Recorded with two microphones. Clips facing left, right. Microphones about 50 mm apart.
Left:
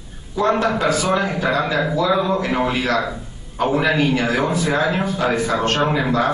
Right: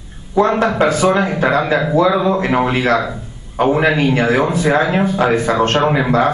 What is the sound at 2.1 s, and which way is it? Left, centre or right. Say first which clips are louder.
A man's voice: right 4 dB; centre.